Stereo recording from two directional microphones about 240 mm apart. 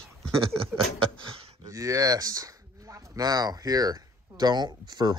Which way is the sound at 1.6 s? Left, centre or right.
Centre.